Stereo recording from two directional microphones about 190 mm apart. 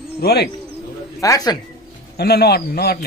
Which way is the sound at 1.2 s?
20° left (ahead or behind).